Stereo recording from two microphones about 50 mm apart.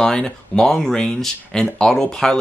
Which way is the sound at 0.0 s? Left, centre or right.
Centre.